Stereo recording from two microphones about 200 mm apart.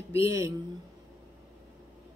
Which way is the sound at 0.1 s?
15° right (ahead or behind).